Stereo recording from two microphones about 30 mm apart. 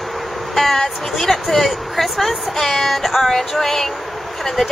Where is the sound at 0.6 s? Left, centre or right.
Centre.